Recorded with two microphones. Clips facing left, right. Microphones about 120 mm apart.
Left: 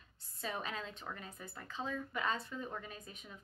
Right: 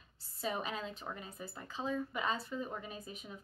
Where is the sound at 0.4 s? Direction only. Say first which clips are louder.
Right 3 dB; 10° right (ahead or behind).